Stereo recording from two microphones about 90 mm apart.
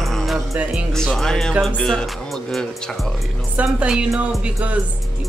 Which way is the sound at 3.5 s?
10° right (ahead or behind).